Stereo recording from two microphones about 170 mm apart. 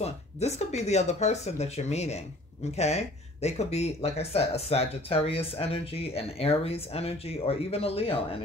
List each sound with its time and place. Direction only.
0.0 s speech: 40° left (ahead or behind)